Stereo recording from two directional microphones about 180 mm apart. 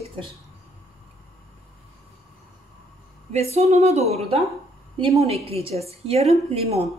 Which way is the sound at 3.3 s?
35° right (ahead or behind).